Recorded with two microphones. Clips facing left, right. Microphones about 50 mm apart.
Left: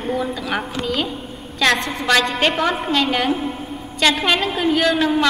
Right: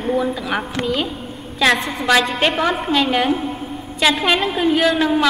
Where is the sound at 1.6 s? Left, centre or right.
Centre.